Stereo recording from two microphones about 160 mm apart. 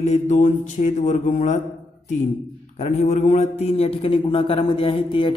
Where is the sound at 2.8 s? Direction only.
45° left (ahead or behind).